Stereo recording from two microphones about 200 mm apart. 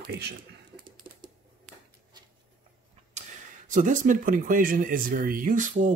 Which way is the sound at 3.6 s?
40° right (ahead or behind).